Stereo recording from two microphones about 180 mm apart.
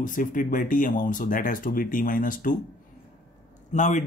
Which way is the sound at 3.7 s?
40° left (ahead or behind).